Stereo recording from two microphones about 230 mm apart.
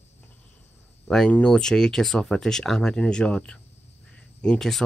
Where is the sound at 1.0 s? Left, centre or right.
Centre.